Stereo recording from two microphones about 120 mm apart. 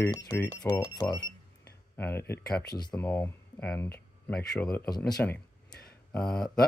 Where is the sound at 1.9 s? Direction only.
20° left (ahead or behind).